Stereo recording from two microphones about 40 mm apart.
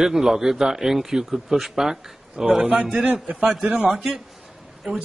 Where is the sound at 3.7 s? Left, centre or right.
Right.